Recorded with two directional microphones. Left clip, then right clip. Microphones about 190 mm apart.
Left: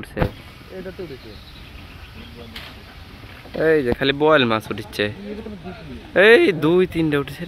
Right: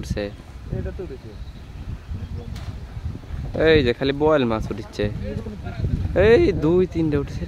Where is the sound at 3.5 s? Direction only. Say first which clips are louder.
Right 1 dB; 25° right (ahead or behind).